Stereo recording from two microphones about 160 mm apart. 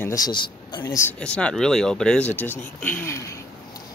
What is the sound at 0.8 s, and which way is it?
Speech, 15° left (ahead or behind).